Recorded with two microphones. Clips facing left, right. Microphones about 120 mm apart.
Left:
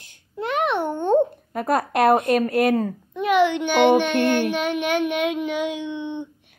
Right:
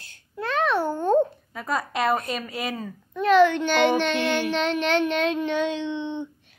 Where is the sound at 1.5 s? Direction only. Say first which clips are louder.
Left 6 dB; 60° left (ahead or behind).